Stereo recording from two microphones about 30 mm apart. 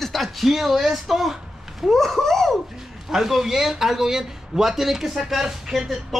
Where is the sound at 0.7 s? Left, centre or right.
Centre.